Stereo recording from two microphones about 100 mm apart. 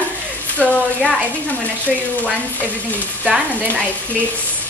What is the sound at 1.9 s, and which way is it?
Speech, 5° right (ahead or behind).